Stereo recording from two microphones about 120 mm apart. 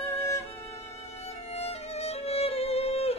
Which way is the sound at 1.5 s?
60° left (ahead or behind).